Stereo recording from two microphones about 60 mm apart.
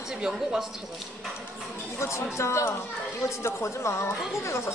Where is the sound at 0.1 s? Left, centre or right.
Centre.